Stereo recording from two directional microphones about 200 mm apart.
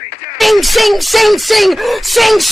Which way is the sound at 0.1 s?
45° left (ahead or behind).